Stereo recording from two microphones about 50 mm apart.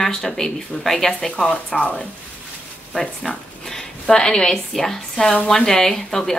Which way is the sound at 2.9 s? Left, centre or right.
Centre.